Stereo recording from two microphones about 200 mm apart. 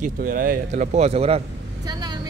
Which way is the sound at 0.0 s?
45° right (ahead or behind).